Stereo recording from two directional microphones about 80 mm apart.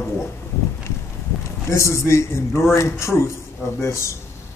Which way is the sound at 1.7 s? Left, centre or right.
Left.